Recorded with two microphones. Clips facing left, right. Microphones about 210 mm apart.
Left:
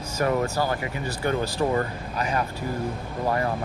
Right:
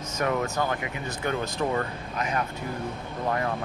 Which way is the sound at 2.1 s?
35° left (ahead or behind).